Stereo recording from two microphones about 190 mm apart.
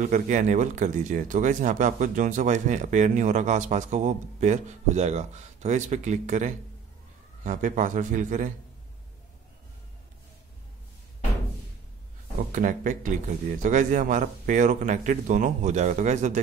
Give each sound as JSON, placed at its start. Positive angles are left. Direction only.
{"t": 0.0, "sound": "a man's voice", "side_deg": -40}
{"t": 12.5, "sound": "speech", "side_deg": -45}